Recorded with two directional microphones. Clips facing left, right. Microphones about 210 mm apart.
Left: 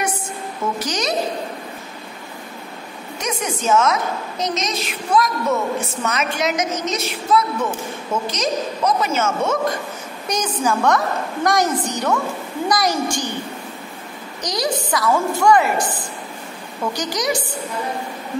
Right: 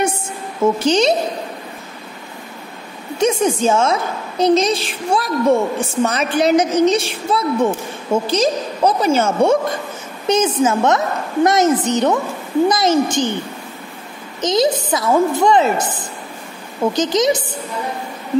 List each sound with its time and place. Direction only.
0.7 s a woman's voice: 25° right (ahead or behind)
3.2 s a woman's voice: 30° right (ahead or behind)
14.4 s a woman's voice: 25° right (ahead or behind)